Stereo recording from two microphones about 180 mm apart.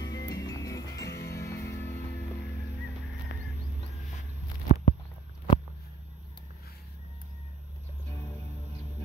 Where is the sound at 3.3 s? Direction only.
65° left (ahead or behind).